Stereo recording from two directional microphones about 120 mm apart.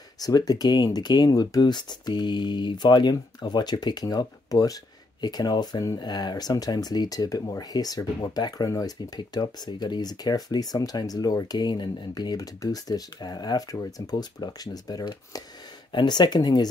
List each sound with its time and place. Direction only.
0.2 s speech: 35° left (ahead or behind)